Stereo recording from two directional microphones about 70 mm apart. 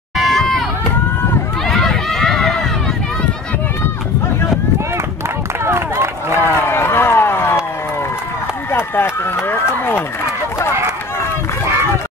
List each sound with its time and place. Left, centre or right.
0.2 s run: centre
1.7 s run: centre
5.7 s run: right
6.4 s a sound: left
8.7 s run: left